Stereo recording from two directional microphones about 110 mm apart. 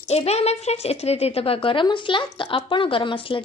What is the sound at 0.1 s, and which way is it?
A woman's voice, 70° left (ahead or behind).